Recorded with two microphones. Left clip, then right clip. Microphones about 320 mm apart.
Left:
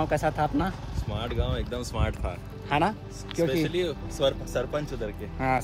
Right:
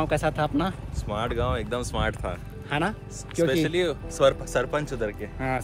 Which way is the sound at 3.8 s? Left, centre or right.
Centre.